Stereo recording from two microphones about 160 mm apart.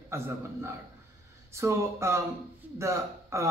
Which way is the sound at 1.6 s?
15° right (ahead or behind).